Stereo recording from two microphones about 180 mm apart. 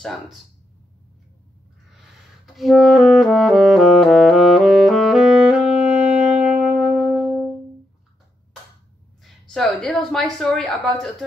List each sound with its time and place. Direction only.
0.0 s speech: centre (ahead or behind)
2.4 s music: centre (ahead or behind)
9.2 s a woman's voice: centre (ahead or behind)